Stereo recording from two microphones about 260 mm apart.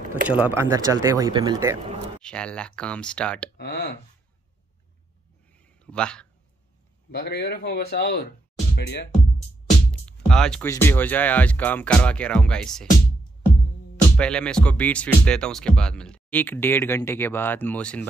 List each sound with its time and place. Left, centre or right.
0.3 s speech: centre
2.2 s speech: centre
3.5 s speech: left
5.5 s a sound: centre
7.1 s a man's voice: left
9.8 s speech: centre
14.1 s speech: centre